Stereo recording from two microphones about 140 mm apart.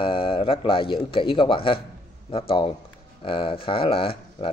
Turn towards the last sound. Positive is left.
turn(degrees=40)  # may be behind; listen again after turning